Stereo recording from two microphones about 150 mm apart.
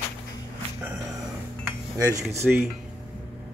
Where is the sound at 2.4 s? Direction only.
15° right (ahead or behind).